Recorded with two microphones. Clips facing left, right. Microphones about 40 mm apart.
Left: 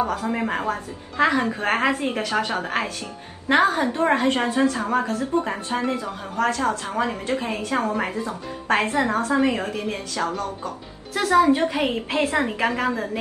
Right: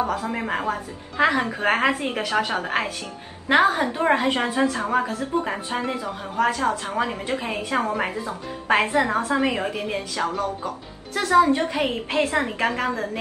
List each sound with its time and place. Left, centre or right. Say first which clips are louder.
0.0 s a woman's voice: left 1 dB; centre
3.4 s a woman's voice: even; centre
8.3 s a woman's voice: right 1 dB; right
11.1 s a woman's voice: even; centre